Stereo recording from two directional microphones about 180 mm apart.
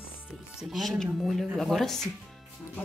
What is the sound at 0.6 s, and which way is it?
Speech, centre (ahead or behind).